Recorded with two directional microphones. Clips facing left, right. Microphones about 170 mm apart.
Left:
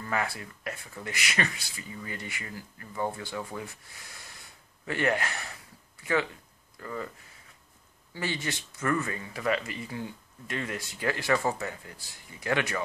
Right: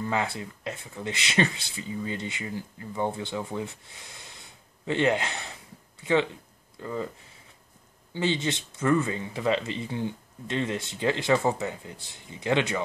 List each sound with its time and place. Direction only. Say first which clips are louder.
0.0 s speech: right 3 dB; 20° right (ahead or behind)
8.1 s speech: right 6 dB; 20° right (ahead or behind)